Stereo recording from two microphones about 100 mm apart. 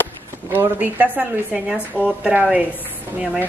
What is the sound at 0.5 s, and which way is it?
A woman's voice, 20° right (ahead or behind).